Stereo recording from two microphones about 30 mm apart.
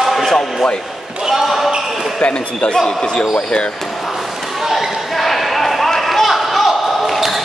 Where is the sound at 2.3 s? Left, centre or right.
Left.